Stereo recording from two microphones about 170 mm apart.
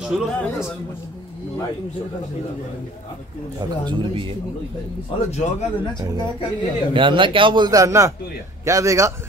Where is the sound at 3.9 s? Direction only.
30° right (ahead or behind).